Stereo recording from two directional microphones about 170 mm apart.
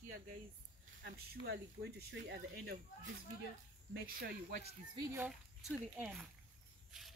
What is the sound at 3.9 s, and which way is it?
Speech, 60° right (ahead or behind).